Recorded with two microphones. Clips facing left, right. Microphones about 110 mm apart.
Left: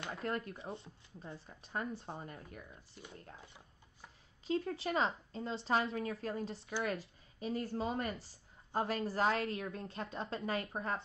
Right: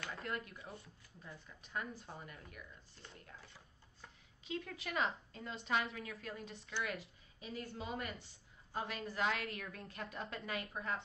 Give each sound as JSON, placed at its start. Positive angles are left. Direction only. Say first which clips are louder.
{"t": 0.0, "sound": "a woman's voice", "louder": "left 5 dB", "side_deg": 30}
{"t": 3.3, "sound": "a sound", "louder": "left 2 dB", "side_deg": 20}
{"t": 4.5, "sound": "a woman's voice", "louder": "left 8 dB", "side_deg": 35}